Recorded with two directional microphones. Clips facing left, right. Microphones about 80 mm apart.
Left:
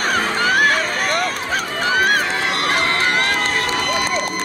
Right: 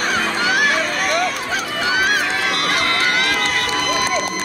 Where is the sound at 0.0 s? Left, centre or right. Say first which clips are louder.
Left 1 dB; left.